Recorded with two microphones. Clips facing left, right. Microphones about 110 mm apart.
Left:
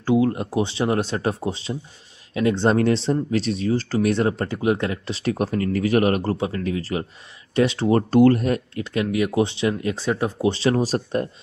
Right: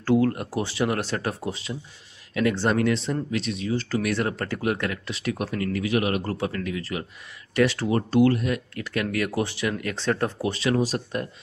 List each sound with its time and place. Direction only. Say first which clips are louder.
0.0 s speech: left 2 dB; 15° left (ahead or behind); by 6.2 s 40° left (ahead or behind)
6.2 s speech: left 4 dB; 25° left (ahead or behind)
7.9 s speech: left 8 dB; 45° left (ahead or behind)
8.7 s speech: left 4 dB; 20° left (ahead or behind)
9.9 s speech: left 2 dB; 10° left (ahead or behind)
10.4 s speech: left 6 dB; 30° left (ahead or behind)